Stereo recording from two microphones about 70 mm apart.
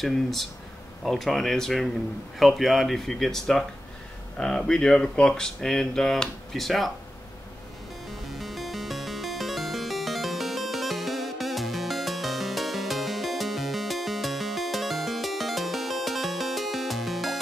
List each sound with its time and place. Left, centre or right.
0.0 s speech: centre
8.1 s music: centre